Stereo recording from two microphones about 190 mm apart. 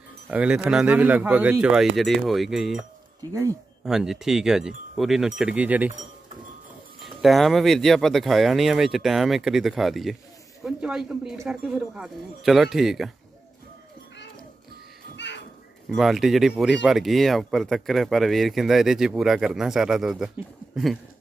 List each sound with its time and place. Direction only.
0.3 s speech: 5° right (ahead or behind)
3.8 s speech: centre (ahead or behind)
5.4 s a sound: 5° right (ahead or behind)
7.0 s speech: centre (ahead or behind)
15.1 s a sound: 65° left (ahead or behind)
15.9 s speech: centre (ahead or behind)